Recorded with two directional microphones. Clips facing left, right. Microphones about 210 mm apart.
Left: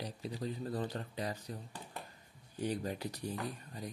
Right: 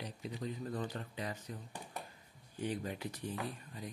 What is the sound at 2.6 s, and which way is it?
Speech, 35° left (ahead or behind).